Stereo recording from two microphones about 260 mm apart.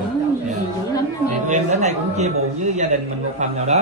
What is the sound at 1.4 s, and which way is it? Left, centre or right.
A man's voice, right.